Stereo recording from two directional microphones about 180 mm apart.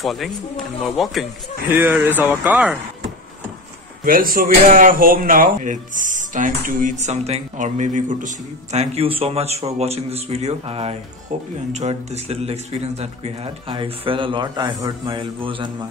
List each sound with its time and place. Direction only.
0.0 s speech: centre (ahead or behind)
4.0 s speech: 50° right (ahead or behind)
8.7 s a man's voice: 30° right (ahead or behind)